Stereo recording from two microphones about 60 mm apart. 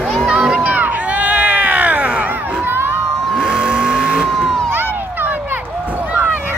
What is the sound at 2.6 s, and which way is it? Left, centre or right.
Crowd, right.